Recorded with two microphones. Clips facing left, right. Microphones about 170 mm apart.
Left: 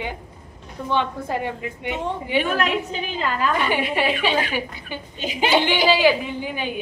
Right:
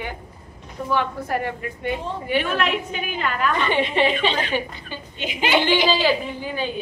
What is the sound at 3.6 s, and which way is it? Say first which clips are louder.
A woman's voice: right 2 dB; 10° left (ahead or behind).